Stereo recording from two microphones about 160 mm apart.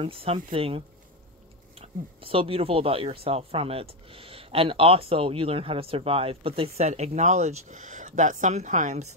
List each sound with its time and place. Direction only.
0.0 s speech: 35° right (ahead or behind)
6.9 s speech: 45° right (ahead or behind)